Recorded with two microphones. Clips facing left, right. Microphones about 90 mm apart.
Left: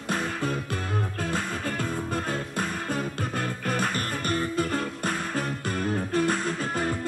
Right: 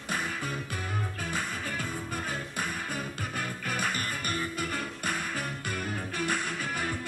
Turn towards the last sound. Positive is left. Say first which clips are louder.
# left 5 dB
turn(degrees=40)  # may be behind; listen again after turning